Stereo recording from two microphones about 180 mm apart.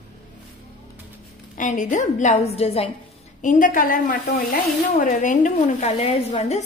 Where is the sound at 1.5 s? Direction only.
45° left (ahead or behind).